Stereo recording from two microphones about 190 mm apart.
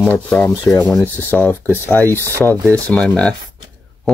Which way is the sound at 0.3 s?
5° left (ahead or behind).